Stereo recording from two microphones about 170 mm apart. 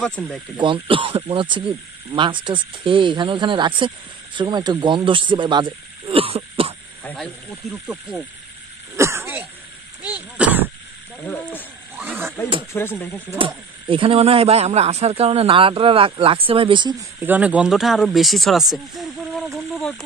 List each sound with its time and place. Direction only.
0.0 s speech: 5° left (ahead or behind)
0.6 s speech: 30° right (ahead or behind)
7.6 s speech: centre (ahead or behind)
8.9 s throat clearing: 15° right (ahead or behind)
10.0 s a sound: 10° right (ahead or behind)
11.2 s speech: 10° left (ahead or behind)
12.0 s a sound: 10° right (ahead or behind)
12.7 s speech: 15° left (ahead or behind)
13.4 s speech: 30° right (ahead or behind)
17.2 s speech: 10° right (ahead or behind)